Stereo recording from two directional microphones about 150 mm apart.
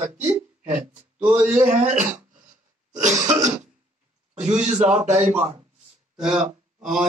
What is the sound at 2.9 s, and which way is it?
Cough, 55° right (ahead or behind).